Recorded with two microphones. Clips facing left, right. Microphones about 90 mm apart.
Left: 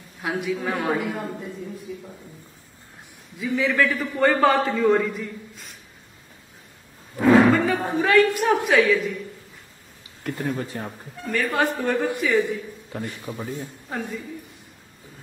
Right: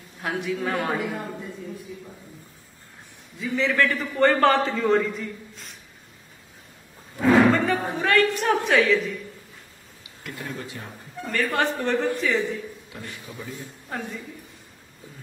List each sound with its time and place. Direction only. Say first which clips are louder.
0.2 s a man's voice: left 1 dB; centre (ahead or behind)
3.3 s a man's voice: left 1 dB; 5° left (ahead or behind)
7.4 s a sound: left 1 dB; 5° left (ahead or behind)
7.9 s a man's voice: left 5 dB; 5° left (ahead or behind)
10.2 s a man's voice: left 7 dB; 40° left (ahead or behind)
11.2 s a man's voice: left 1 dB; 5° left (ahead or behind)
12.9 s a man's voice: left 6 dB; 40° left (ahead or behind)
13.8 s a man's voice: left 1 dB; centre (ahead or behind)